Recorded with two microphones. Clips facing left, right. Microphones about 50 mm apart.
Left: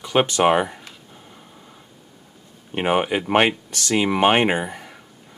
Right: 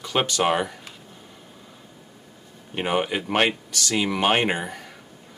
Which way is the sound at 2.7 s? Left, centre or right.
Left.